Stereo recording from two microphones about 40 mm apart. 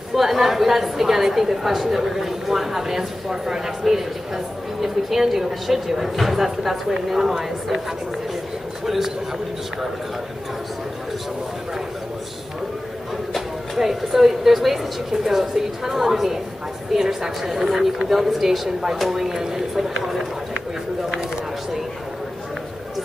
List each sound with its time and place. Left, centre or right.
0.1 s a woman's voice: centre
8.8 s speech: centre
13.7 s a woman's voice: centre